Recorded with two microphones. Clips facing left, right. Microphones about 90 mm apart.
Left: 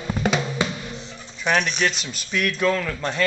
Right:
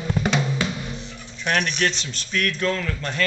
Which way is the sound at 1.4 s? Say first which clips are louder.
Left 1 dB; 5° left (ahead or behind).